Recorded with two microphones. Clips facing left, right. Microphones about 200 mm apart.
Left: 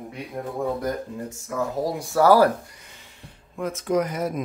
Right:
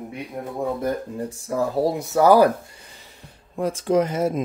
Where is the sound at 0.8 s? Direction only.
30° right (ahead or behind).